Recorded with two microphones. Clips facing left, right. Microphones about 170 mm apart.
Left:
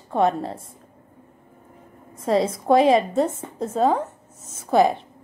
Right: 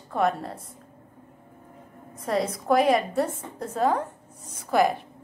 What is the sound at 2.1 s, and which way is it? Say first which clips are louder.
A woman's voice: left 5 dB; 25° left (ahead or behind).